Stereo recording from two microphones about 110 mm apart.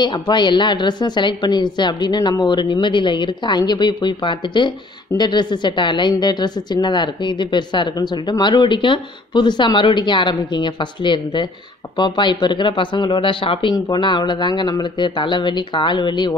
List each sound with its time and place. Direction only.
0.0 s a woman's voice: 45° left (ahead or behind)
13.7 s a woman's voice: 40° left (ahead or behind)